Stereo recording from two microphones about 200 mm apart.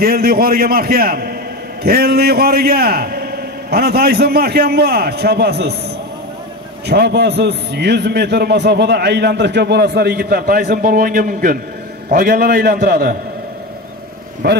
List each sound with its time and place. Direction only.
0.0 s a man's voice: 50° right (ahead or behind)
6.9 s a man's voice: 55° right (ahead or behind)
14.4 s a man's voice: 55° right (ahead or behind)